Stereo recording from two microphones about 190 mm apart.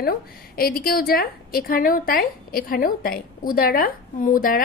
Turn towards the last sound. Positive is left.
turn(degrees=45)  # may be behind; listen again after turning